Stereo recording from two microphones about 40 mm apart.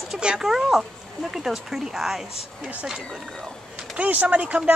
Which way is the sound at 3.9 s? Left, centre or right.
Right.